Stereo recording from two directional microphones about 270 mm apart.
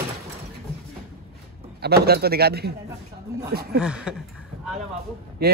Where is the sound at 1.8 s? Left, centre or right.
Right.